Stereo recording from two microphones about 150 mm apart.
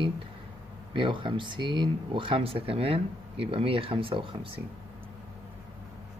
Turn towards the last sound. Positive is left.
turn(degrees=-35)  # may be behind; listen again after turning